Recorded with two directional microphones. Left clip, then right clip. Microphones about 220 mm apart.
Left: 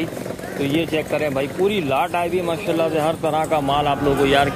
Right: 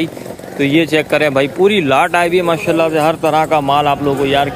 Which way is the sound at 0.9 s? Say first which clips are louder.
Right 9 dB; 25° right (ahead or behind).